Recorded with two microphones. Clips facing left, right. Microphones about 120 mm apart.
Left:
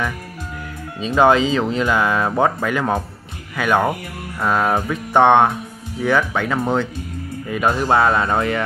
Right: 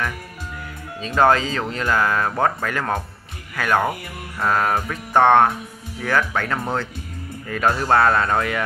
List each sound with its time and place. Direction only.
1.0 s speech: 15° left (ahead or behind)